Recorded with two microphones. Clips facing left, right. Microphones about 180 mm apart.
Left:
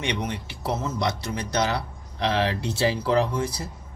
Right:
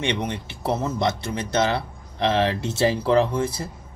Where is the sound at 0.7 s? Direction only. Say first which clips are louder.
Right 3 dB; 60° right (ahead or behind).